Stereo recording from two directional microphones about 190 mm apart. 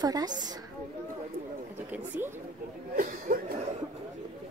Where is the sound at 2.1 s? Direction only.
10° right (ahead or behind).